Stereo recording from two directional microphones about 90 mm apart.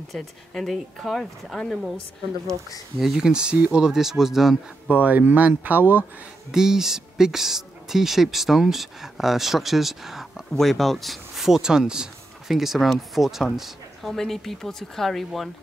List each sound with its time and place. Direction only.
0.1 s speech: centre (ahead or behind)
3.0 s speech: 5° right (ahead or behind)
4.8 s speech: 20° right (ahead or behind)
6.5 s speech: 5° right (ahead or behind)